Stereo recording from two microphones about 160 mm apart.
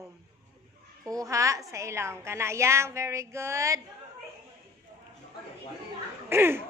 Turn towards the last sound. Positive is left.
turn(degrees=-15)  # may be behind; listen again after turning